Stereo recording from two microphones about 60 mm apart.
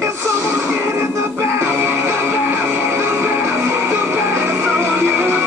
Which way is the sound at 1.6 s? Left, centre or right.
Right.